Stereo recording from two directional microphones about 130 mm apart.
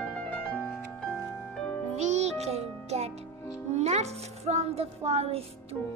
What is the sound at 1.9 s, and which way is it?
Music, 60° right (ahead or behind).